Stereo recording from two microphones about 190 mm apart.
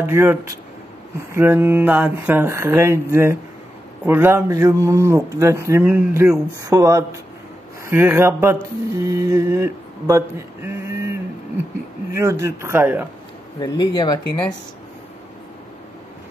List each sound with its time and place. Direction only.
0.0 s speech: 10° right (ahead or behind)
12.1 s speech: 15° right (ahead or behind)
13.6 s speech: 20° left (ahead or behind)